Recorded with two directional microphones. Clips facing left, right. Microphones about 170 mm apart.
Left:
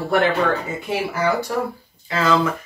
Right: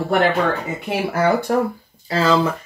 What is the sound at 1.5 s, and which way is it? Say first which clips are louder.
Speech: right 5 dB; 50° right (ahead or behind).